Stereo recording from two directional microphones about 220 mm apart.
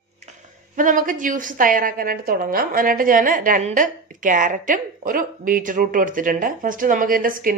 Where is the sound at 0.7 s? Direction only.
35° right (ahead or behind).